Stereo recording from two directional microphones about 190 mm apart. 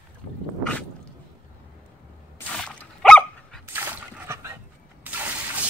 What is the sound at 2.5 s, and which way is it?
Dog, 5° left (ahead or behind).